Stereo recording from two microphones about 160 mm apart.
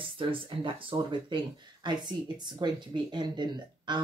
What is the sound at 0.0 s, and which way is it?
Speech, 35° right (ahead or behind).